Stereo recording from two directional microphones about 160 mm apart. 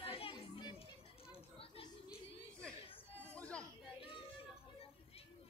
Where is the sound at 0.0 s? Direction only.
35° left (ahead or behind).